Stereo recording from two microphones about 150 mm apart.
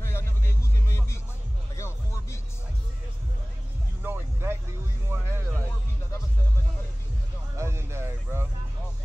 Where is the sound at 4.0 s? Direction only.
15° right (ahead or behind).